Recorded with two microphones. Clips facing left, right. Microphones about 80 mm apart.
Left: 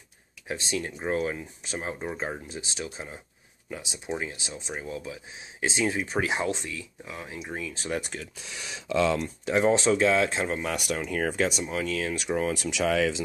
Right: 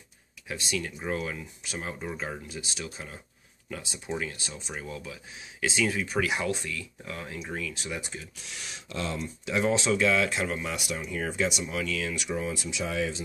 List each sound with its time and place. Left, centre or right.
0.5 s speech: left
7.7 s speech: left
8.0 s speech: left
9.5 s speech: left
10.6 s speech: left
12.4 s speech: left